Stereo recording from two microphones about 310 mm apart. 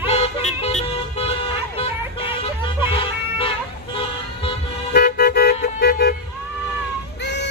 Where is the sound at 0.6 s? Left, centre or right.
Centre.